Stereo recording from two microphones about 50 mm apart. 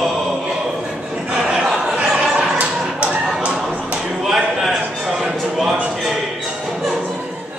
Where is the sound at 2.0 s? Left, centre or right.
Right.